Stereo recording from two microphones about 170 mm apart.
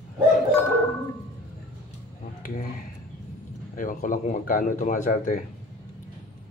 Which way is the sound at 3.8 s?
55° left (ahead or behind).